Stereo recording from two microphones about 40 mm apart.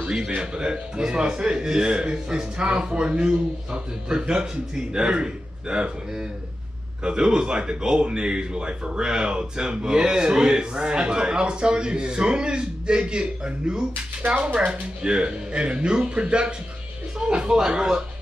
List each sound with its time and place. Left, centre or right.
0.4 s speech: right
14.2 s speech: right